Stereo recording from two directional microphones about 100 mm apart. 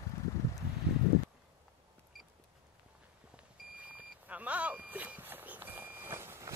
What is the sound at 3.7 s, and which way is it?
Vehicle, 15° right (ahead or behind).